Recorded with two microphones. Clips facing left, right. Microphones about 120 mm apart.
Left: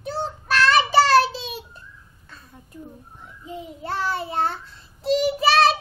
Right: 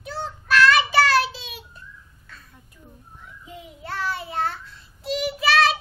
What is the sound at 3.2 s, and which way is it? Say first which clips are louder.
Child singing: left 6 dB; 30° left (ahead or behind).